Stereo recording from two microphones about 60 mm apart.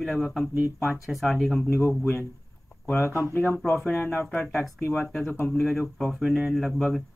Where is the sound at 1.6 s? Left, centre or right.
Left.